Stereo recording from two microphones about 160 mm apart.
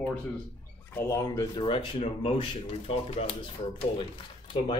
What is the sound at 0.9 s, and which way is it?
Speech, 15° left (ahead or behind).